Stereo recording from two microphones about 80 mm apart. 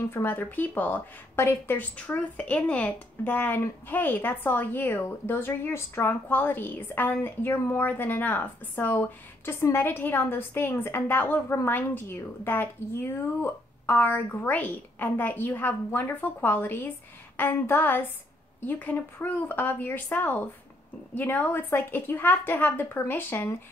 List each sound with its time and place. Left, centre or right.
0.0 s a woman's voice: left
2.0 s a woman's voice: centre; by 23.6 s left